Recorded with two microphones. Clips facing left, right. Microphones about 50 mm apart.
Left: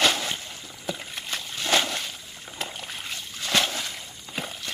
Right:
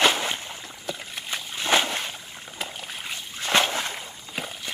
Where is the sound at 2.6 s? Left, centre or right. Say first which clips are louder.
Even; centre.